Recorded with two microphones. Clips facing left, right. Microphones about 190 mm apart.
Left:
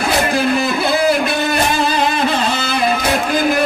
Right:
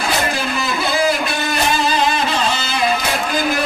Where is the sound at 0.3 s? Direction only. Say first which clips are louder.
Left 6 dB; 55° left (ahead or behind).